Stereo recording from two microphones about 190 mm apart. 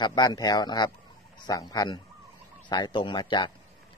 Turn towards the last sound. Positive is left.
turn(degrees=25)  # may be behind; listen again after turning